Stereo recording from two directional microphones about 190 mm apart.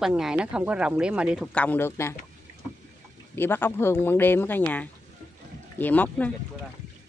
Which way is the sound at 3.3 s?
10° left (ahead or behind).